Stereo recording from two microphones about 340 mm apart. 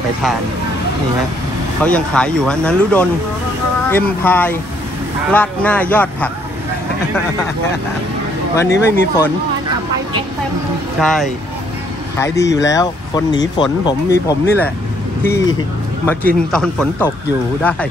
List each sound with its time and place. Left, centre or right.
1.8 s speech: centre
8.5 s speech: centre
11.0 s speech: centre
12.5 s speech: centre